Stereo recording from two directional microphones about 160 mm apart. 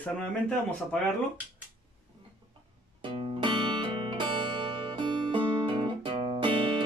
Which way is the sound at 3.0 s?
30° right (ahead or behind).